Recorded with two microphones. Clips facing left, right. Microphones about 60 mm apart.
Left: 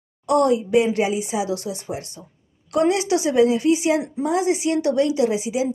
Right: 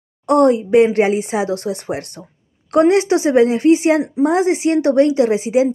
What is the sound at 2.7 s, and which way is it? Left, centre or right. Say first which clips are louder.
Speech: right 6 dB; right.